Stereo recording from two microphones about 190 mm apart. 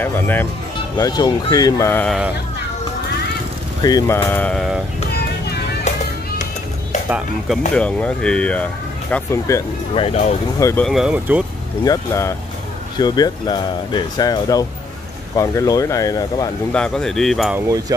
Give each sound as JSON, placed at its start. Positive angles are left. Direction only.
{"t": 0.0, "sound": "speech", "side_deg": 10}
{"t": 0.9, "sound": "speech", "side_deg": 20}
{"t": 3.8, "sound": "speech", "side_deg": 20}
{"t": 5.9, "sound": "music", "side_deg": 35}
{"t": 7.1, "sound": "speech", "side_deg": -5}
{"t": 9.9, "sound": "speech", "side_deg": 30}
{"t": 10.6, "sound": "speech", "side_deg": 15}
{"t": 10.9, "sound": "speech", "side_deg": -5}
{"t": 11.8, "sound": "speech", "side_deg": 15}
{"t": 16.7, "sound": "speech", "side_deg": 5}
{"t": 17.6, "sound": "speech", "side_deg": -20}